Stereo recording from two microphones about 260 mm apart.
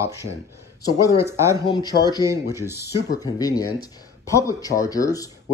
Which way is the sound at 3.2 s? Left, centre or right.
Centre.